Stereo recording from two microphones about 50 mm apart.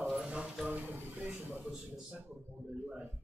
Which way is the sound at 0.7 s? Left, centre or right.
Right.